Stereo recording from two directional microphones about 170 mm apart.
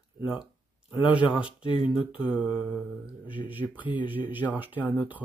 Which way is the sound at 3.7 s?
10° right (ahead or behind).